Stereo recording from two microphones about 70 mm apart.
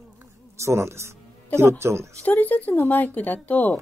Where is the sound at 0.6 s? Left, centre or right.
Right.